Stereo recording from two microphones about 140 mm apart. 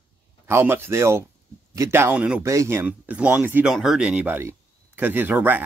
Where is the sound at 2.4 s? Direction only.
20° right (ahead or behind).